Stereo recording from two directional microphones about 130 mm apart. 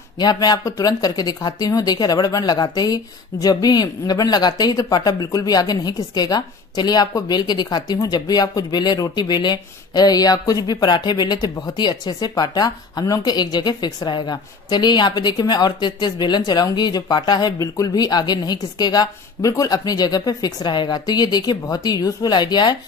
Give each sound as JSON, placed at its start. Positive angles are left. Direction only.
{"t": 0.2, "sound": "speech", "side_deg": 30}